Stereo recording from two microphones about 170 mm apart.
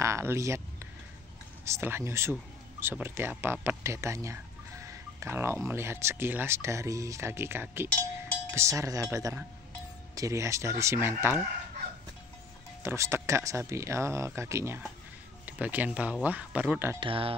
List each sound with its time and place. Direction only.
0.0 s speech: 15° right (ahead or behind)
1.6 s speech: 15° right (ahead or behind)
8.2 s cowbell: 15° right (ahead or behind)
10.1 s speech: 20° right (ahead or behind)
12.8 s speech: 15° right (ahead or behind)
17.0 s speech: 30° right (ahead or behind)